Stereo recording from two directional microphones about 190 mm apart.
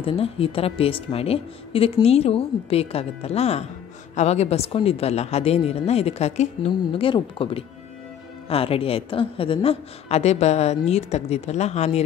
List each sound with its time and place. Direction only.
0.0 s a woman's voice: 30° left (ahead or behind)